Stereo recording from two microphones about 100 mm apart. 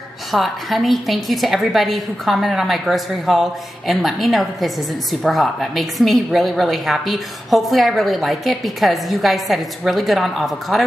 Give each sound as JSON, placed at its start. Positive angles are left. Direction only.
{"t": 0.3, "sound": "a woman's voice", "side_deg": 0}